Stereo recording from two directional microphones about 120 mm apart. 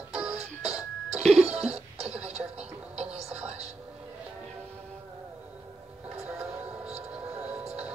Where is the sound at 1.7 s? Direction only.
60° right (ahead or behind).